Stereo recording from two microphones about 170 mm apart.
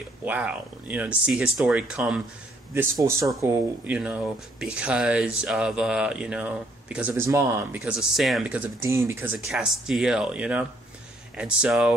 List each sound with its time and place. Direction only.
0.2 s speech: 10° right (ahead or behind)
2.7 s speech: 15° right (ahead or behind)
7.8 s speech: 5° right (ahead or behind)